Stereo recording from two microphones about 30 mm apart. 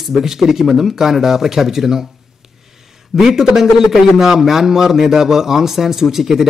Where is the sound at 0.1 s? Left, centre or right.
Centre.